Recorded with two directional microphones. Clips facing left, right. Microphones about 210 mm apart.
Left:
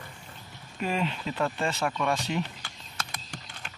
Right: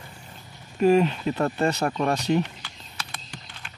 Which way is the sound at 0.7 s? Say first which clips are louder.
Right 11 dB; 45° right (ahead or behind).